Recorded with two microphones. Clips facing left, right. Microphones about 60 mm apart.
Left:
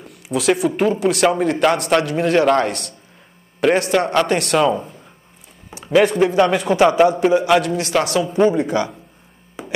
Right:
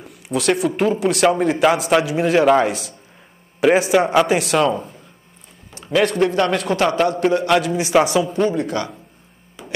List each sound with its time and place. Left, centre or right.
0.0 s speech: centre
5.7 s a sound: centre
6.0 s speech: centre
7.7 s a man's voice: centre
8.8 s speech: centre
9.6 s a sound: left